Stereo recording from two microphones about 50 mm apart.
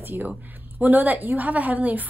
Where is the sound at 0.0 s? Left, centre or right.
Right.